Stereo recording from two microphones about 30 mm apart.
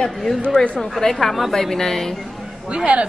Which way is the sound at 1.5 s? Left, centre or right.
Centre.